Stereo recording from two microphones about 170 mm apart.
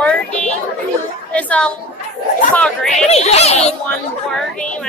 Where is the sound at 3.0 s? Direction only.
40° left (ahead or behind).